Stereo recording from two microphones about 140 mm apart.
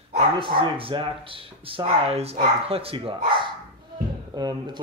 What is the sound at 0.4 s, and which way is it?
Speech, 40° right (ahead or behind).